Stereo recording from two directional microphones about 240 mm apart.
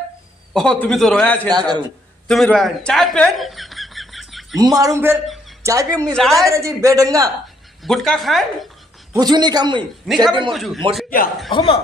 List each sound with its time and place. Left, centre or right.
0.5 s a man's voice: centre
2.2 s chuckle: centre
4.6 s a man's voice: centre
6.1 s a man's voice: centre
6.4 s a man's voice: centre
7.8 s a man's voice: centre
9.1 s a man's voice: centre
10.0 s a man's voice: centre
11.5 s speech: centre